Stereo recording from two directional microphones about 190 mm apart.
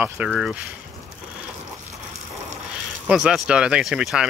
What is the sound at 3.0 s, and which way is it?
Speech, 5° right (ahead or behind).